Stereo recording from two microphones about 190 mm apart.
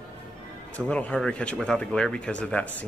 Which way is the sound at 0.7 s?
5° left (ahead or behind).